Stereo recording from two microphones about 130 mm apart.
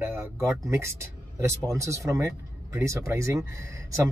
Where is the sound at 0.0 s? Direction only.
20° right (ahead or behind).